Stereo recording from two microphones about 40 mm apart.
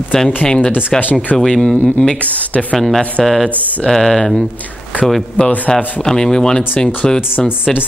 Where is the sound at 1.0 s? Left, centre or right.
Left.